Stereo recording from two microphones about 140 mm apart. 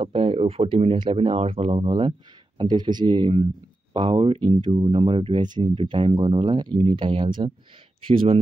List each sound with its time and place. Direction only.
0.0 s speech: 40° right (ahead or behind)